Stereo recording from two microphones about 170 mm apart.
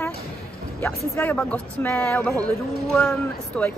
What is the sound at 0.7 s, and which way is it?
Speech, 15° left (ahead or behind).